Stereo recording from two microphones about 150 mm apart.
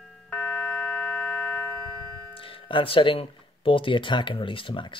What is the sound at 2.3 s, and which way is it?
Speech, 35° left (ahead or behind).